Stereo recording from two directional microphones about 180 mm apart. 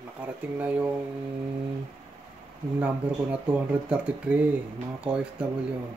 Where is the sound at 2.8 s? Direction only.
5° right (ahead or behind).